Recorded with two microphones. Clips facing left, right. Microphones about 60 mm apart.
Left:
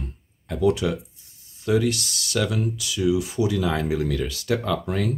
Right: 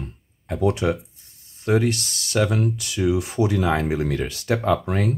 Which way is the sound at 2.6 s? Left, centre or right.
Right.